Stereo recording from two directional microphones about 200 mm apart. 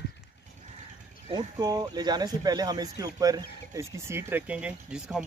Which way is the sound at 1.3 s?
20° right (ahead or behind).